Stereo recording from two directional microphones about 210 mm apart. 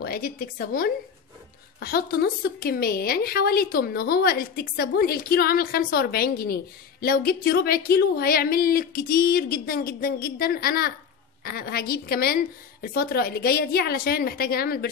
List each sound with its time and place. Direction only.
0.0 s a woman's voice: 45° left (ahead or behind)